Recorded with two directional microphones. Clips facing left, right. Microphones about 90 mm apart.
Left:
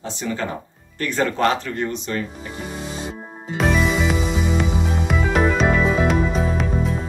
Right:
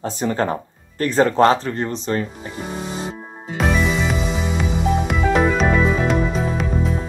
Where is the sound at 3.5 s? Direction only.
Centre (ahead or behind).